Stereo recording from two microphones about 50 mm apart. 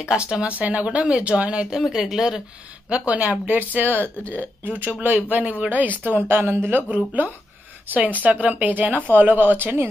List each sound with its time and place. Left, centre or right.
0.0 s speech: centre
0.6 s speech: right
1.7 s speech: centre
2.9 s speech: right
6.2 s speech: right
6.9 s speech: right